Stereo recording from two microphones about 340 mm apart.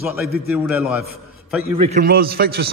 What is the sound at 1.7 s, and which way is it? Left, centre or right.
Speech, centre.